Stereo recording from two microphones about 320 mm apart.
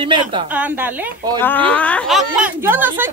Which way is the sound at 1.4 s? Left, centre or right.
Centre.